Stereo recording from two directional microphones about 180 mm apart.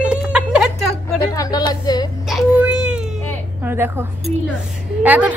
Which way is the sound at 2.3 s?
5° right (ahead or behind).